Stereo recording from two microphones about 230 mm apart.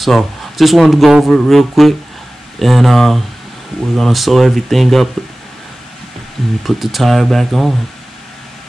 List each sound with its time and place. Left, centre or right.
0.0 s speech: centre
6.6 s speech: centre